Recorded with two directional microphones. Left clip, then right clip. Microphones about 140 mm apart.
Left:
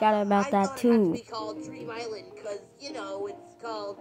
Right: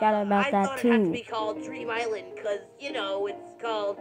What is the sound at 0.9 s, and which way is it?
Meow, 25° right (ahead or behind).